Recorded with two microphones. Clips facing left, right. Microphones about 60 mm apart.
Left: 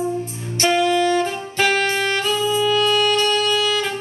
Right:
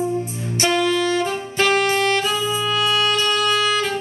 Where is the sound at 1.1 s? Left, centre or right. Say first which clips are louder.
Even; centre.